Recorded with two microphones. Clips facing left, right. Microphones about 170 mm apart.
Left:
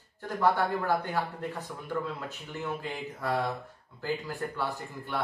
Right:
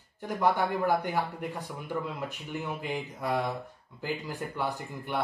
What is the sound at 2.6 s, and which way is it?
Speech, 15° right (ahead or behind).